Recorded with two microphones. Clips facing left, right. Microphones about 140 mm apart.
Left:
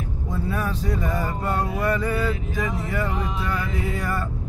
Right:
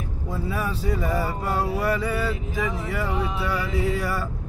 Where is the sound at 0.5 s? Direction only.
5° right (ahead or behind).